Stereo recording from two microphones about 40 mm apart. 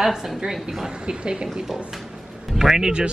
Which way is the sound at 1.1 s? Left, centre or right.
Right.